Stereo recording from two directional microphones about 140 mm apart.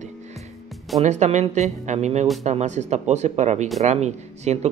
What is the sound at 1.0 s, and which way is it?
Speech, 55° right (ahead or behind).